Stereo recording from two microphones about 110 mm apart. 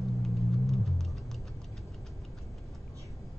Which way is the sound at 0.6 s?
Centre (ahead or behind).